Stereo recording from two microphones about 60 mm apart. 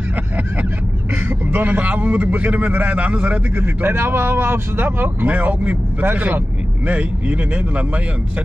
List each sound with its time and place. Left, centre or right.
1.1 s a man's voice: right